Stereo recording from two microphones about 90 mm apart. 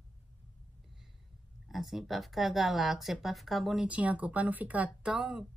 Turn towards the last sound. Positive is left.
turn(degrees=-5)  # may be behind; listen again after turning